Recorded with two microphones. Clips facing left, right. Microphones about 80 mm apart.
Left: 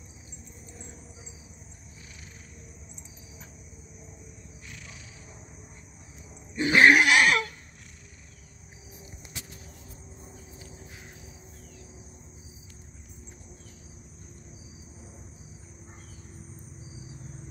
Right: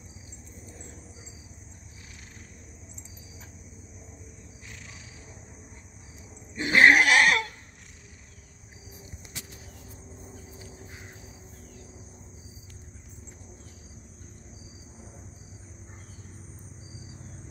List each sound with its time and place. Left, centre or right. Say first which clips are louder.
6.5 s goat: even; right